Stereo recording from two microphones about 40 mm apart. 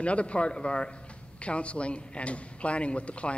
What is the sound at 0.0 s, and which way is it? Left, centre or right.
A man's voice, left.